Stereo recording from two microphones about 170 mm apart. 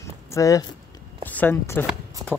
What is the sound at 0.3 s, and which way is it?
Speech, 20° left (ahead or behind).